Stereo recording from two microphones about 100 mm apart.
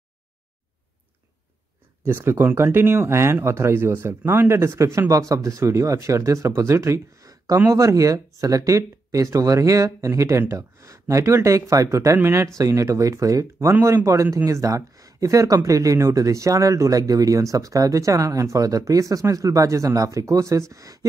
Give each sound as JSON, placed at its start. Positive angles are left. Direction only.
{"t": 2.0, "sound": "speech", "side_deg": -20}